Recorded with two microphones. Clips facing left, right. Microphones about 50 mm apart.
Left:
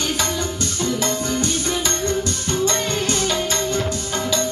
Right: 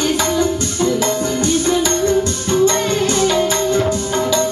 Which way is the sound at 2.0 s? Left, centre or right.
Right.